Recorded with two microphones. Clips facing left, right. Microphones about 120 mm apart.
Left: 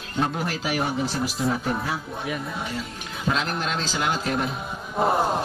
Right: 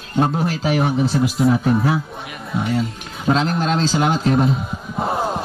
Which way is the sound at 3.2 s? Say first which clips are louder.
Right 8 dB; 30° right (ahead or behind).